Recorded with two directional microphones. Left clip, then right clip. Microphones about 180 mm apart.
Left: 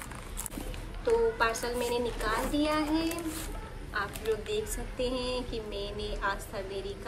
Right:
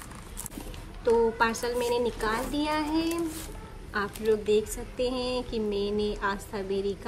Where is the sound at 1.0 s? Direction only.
40° right (ahead or behind).